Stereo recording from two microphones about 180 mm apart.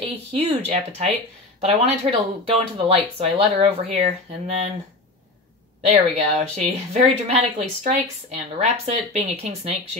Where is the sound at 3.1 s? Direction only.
35° right (ahead or behind).